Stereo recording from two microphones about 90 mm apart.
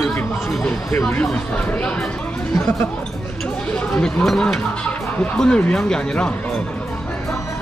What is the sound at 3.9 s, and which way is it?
Speech, 10° left (ahead or behind).